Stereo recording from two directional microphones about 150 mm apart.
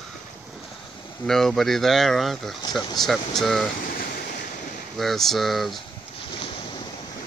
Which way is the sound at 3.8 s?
75° left (ahead or behind).